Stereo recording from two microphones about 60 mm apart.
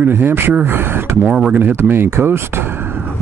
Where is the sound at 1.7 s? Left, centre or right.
Right.